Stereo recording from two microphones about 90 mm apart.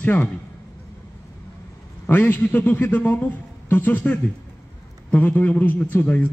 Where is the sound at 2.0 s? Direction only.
20° left (ahead or behind).